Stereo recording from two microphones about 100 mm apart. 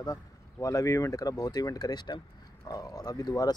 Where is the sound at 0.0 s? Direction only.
35° left (ahead or behind).